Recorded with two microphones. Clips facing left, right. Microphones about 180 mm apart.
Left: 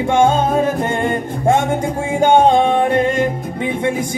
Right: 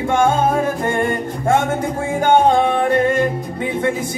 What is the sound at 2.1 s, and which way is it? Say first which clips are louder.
Music: left 2 dB; 20° left (ahead or behind).